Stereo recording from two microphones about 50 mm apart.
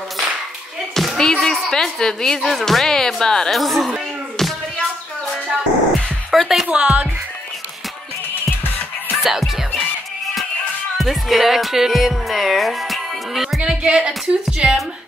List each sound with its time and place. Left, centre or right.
0.9 s a sound: centre
1.4 s a woman's voice: centre
4.4 s a sound: centre
6.3 s speech: centre
6.7 s speech: centre
9.1 s music: centre
11.0 s music: centre
13.7 s speech: centre